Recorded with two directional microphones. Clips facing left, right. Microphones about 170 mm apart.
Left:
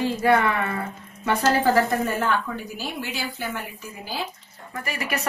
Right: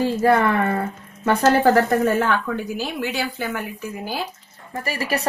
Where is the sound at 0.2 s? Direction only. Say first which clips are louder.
Right 3 dB; 40° right (ahead or behind).